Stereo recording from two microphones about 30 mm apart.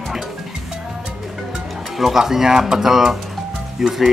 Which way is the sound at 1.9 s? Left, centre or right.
Centre.